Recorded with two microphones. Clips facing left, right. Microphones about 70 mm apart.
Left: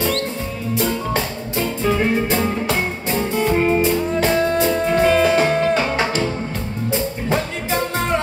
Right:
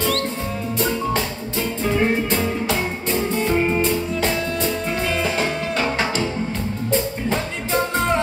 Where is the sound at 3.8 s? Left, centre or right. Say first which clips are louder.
Left 3 dB; left.